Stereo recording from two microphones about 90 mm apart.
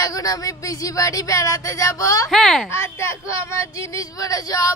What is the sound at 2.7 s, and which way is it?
Speech, 30° left (ahead or behind).